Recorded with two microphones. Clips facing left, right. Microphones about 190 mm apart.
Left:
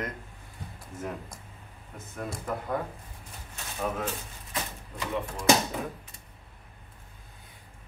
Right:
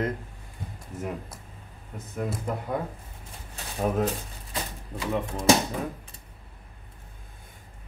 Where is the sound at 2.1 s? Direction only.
5° right (ahead or behind).